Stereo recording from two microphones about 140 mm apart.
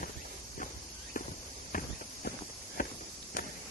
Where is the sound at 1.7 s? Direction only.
75° left (ahead or behind).